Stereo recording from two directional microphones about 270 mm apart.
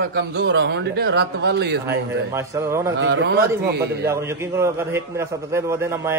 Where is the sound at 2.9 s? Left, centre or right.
Right.